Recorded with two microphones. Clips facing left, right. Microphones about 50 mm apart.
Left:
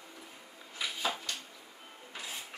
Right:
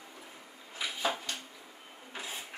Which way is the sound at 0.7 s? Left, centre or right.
Centre.